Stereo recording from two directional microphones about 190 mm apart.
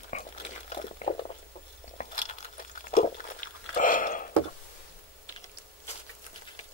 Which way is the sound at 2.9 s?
45° left (ahead or behind).